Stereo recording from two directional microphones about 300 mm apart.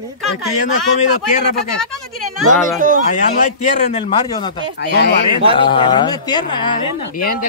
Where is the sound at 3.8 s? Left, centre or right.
Centre.